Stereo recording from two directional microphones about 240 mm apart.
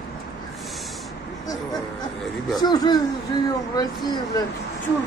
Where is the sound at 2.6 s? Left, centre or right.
Centre.